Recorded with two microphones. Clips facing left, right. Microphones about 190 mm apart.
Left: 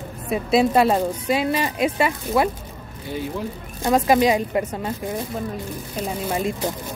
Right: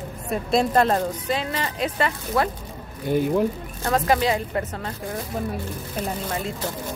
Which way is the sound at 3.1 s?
50° right (ahead or behind).